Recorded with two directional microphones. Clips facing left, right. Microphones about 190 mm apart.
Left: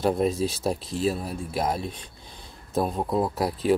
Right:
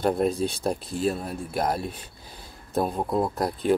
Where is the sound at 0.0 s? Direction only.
Centre (ahead or behind).